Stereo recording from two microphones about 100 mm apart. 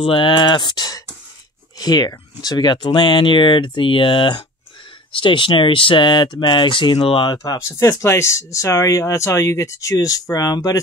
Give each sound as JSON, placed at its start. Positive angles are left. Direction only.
{"t": 0.0, "sound": "speech", "side_deg": 60}
{"t": 7.3, "sound": "speech", "side_deg": 30}